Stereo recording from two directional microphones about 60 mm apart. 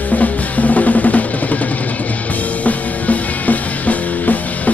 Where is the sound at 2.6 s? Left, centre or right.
Left.